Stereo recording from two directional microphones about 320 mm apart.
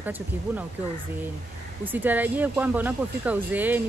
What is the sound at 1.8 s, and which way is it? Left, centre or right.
Speech, centre.